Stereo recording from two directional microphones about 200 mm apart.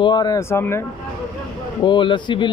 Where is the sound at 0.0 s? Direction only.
20° left (ahead or behind).